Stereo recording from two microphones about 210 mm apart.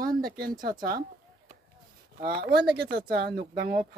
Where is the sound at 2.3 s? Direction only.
45° right (ahead or behind).